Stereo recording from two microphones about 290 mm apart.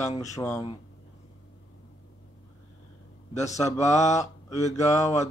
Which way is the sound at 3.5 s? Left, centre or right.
Centre.